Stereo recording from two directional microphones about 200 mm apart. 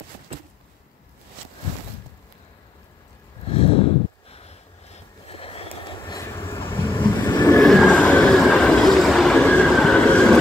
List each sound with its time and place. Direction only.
3.4 s snort: 30° left (ahead or behind)
4.3 s vehicle: 30° left (ahead or behind)
6.2 s vehicle: 10° left (ahead or behind)
7.5 s train: centre (ahead or behind)